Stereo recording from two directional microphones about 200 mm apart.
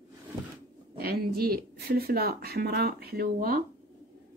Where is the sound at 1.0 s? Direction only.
50° right (ahead or behind).